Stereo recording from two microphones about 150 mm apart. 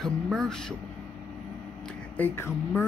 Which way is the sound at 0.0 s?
5° left (ahead or behind).